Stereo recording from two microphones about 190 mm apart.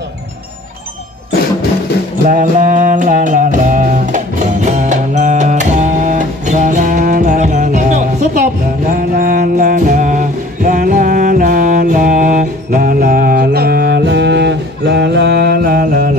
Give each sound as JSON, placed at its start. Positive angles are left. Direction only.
{"t": 2.2, "sound": "music", "side_deg": -45}